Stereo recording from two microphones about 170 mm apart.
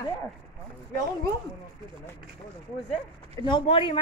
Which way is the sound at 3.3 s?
25° left (ahead or behind).